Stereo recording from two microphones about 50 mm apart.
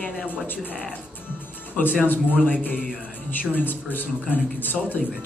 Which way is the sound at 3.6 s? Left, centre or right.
Left.